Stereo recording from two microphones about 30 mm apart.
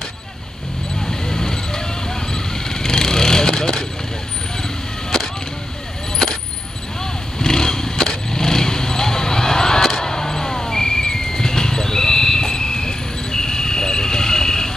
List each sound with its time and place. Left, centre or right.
1.0 s vehicle: centre
7.3 s vehicle: centre
9.8 s a sound: centre